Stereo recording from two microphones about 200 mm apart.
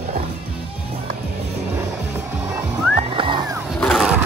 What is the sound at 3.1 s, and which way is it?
Music, 25° right (ahead or behind).